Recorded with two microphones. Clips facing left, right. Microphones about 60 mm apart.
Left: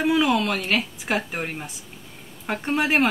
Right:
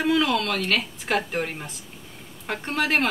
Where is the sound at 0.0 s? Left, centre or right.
Centre.